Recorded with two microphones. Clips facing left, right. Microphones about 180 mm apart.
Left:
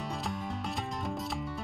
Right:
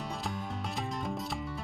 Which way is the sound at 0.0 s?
Centre (ahead or behind).